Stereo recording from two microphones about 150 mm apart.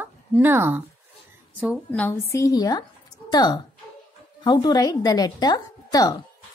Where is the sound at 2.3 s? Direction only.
20° left (ahead or behind).